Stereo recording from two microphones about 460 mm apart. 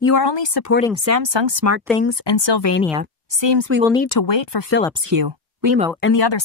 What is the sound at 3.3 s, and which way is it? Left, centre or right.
Speech, right.